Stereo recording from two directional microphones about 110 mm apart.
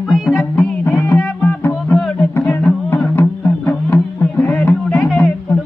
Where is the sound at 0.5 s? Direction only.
20° left (ahead or behind).